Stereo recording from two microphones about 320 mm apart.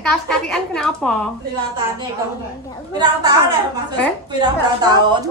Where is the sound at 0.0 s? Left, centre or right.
Centre.